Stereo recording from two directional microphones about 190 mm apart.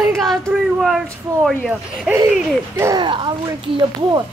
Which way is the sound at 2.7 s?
15° right (ahead or behind).